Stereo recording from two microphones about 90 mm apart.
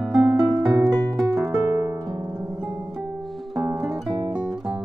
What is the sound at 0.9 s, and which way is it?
Music, centre (ahead or behind).